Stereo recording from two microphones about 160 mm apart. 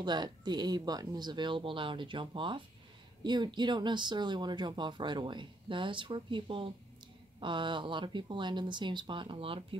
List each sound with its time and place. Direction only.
0.0 s speech: 25° right (ahead or behind)